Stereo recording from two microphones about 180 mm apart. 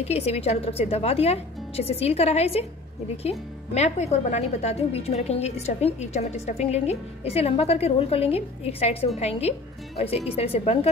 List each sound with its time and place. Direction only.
0.1 s speech: 35° left (ahead or behind)